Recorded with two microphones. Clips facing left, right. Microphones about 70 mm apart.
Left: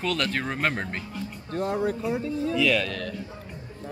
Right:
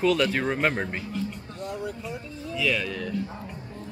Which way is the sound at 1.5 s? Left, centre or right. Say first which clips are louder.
Left 9 dB; left.